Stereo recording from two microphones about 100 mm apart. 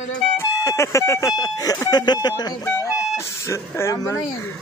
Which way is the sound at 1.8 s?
45° left (ahead or behind).